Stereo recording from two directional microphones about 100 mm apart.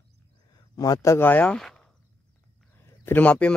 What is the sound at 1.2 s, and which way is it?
Speech, 15° left (ahead or behind).